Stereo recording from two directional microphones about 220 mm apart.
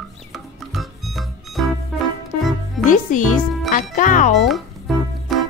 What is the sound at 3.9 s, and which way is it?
Speech, 35° left (ahead or behind).